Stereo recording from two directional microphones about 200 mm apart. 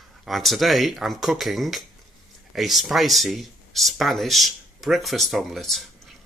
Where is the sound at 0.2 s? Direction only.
Centre (ahead or behind).